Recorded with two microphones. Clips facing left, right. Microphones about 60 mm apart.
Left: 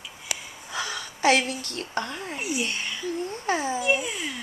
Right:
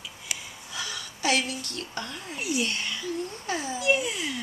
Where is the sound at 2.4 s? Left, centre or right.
Centre.